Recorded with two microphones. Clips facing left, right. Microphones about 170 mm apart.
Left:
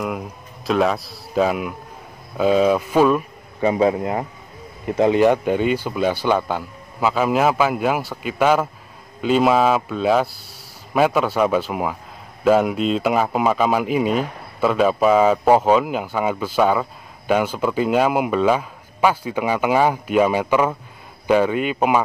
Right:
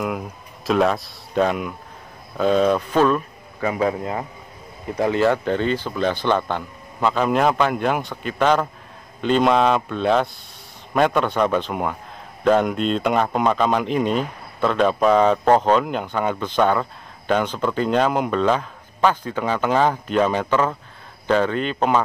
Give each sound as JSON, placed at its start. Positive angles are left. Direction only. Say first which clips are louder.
{"t": 0.0, "sound": "speech", "louder": "even", "side_deg": 0}
{"t": 3.6, "sound": "a man's voice", "louder": "left 4 dB", "side_deg": 25}